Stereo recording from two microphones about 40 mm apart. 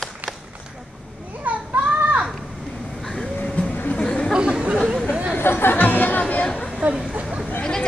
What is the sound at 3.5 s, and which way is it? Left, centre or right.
Vehicle, left.